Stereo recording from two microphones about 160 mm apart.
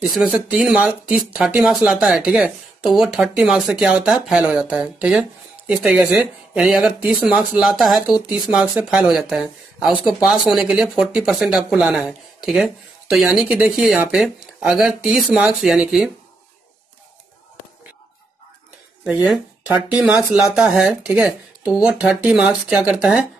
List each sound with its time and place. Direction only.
0.1 s speech: centre (ahead or behind)
19.7 s speech: 5° right (ahead or behind)